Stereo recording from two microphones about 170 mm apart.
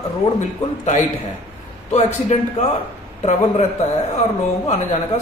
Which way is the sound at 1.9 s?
40° left (ahead or behind).